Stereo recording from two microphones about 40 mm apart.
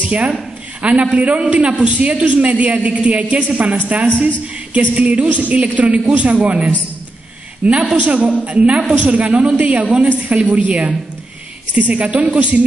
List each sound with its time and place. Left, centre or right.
0.8 s a man's voice: right